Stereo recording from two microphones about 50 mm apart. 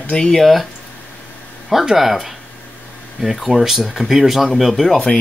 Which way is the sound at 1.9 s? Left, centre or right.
Centre.